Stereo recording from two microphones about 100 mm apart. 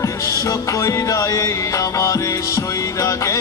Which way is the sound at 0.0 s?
35° left (ahead or behind).